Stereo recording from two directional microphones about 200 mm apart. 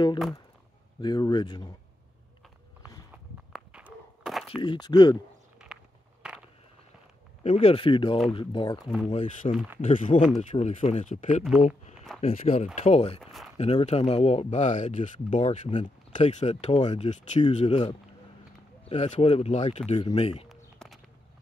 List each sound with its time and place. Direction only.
1.0 s speech: 20° left (ahead or behind)
3.5 s a sound: 5° right (ahead or behind)
4.6 s speech: 20° left (ahead or behind)
5.7 s walk: 5° right (ahead or behind)
7.4 s speech: 30° left (ahead or behind)
20.4 s a sound: centre (ahead or behind)